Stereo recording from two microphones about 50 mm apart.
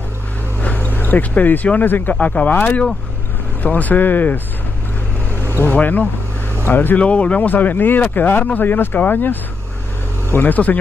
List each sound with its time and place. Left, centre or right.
0.6 s speech: left
5.7 s speech: left
6.7 s speech: left
7.0 s speech: left